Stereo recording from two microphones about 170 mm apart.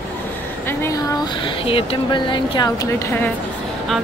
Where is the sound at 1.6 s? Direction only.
30° left (ahead or behind).